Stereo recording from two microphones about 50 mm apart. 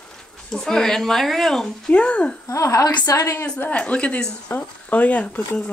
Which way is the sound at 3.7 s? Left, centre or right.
Left.